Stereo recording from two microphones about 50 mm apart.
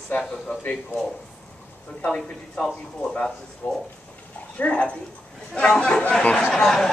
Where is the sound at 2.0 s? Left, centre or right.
Centre.